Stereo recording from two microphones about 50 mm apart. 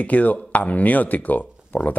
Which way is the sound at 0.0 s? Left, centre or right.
Left.